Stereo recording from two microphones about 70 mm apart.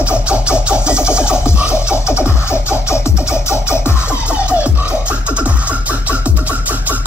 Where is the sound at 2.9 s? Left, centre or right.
Left.